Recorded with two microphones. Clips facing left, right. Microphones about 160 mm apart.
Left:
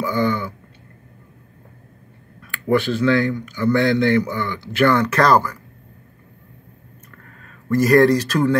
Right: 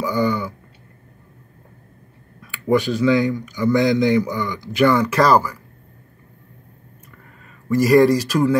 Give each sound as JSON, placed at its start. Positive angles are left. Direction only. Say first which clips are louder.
{"t": 0.0, "sound": "a man's voice", "louder": "even", "side_deg": -10}
{"t": 2.7, "sound": "a man's voice", "louder": "right 1 dB", "side_deg": -10}
{"t": 7.4, "sound": "speech", "louder": "even", "side_deg": -10}